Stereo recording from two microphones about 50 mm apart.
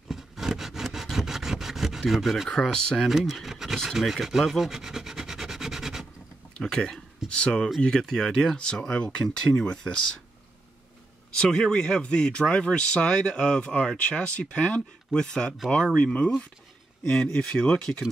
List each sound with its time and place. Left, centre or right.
0.1 s a sound: centre
1.1 s rub: centre
2.5 s speech: centre
3.1 s rub: centre
6.6 s speech: centre
11.4 s speech: centre